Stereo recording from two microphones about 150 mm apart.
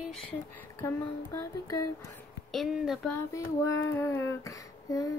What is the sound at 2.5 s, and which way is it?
Speech, centre (ahead or behind).